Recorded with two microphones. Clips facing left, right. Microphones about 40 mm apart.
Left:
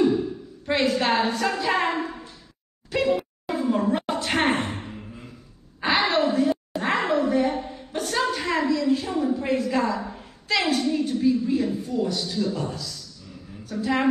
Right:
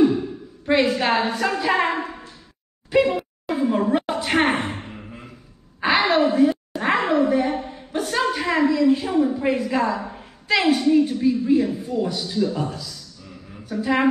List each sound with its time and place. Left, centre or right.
0.7 s speech: centre
2.9 s speech: centre
3.2 s a sound: centre
4.1 s a woman's voice: centre
5.8 s a woman's voice: centre
6.8 s a sound: centre
8.6 s speech: centre
10.0 s a sound: centre
11.0 s speech: centre